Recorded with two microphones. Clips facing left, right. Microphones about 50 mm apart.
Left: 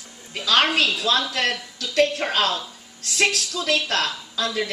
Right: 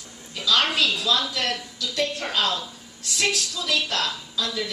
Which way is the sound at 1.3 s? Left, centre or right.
Left.